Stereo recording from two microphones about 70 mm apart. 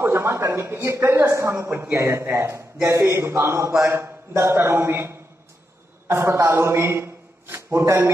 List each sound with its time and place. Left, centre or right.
0.0 s a woman's voice: right